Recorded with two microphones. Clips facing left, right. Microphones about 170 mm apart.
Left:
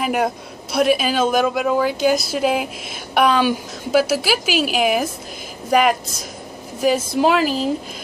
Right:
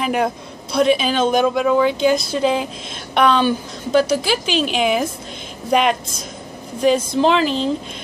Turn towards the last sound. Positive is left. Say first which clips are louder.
# right 1 dB
turn(degrees=5)  # may be behind; listen again after turning